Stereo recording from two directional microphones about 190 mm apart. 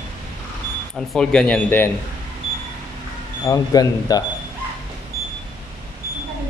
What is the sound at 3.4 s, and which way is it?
Speech, 20° left (ahead or behind).